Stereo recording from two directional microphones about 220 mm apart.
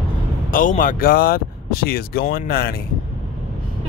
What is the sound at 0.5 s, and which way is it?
Speech, 35° left (ahead or behind).